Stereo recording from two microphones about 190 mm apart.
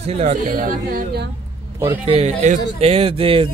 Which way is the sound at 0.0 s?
35° right (ahead or behind).